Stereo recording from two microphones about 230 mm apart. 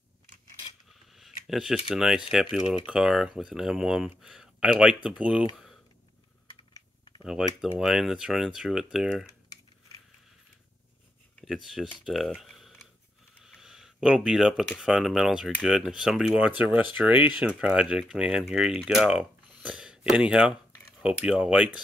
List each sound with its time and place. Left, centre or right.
1.1 s a sound: centre
1.9 s speech: centre
6.7 s typing: centre
7.6 s speech: centre
11.4 s speech: centre